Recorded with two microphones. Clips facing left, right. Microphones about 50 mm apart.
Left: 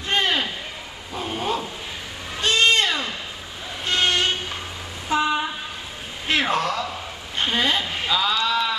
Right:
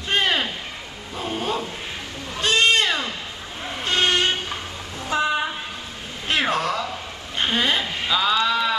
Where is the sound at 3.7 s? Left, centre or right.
Right.